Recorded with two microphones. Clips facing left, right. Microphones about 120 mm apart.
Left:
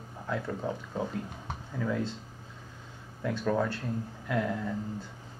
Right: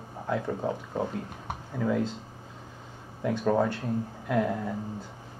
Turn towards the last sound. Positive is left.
turn(degrees=-15)  # may be behind; listen again after turning